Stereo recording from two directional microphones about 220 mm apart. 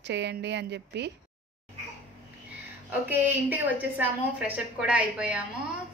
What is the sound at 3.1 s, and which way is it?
A woman's voice, 10° right (ahead or behind).